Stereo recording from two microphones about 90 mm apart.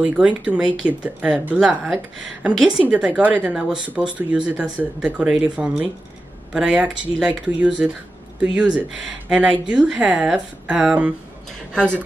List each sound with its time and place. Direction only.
0.0 s a woman's voice: 15° right (ahead or behind)
3.5 s speech: 10° right (ahead or behind)
11.7 s speech: 10° left (ahead or behind)